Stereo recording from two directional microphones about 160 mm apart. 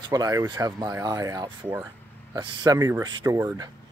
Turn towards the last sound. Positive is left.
turn(degrees=-15)  # may be behind; listen again after turning